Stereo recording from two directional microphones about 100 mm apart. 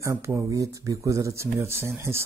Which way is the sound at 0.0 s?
30° right (ahead or behind).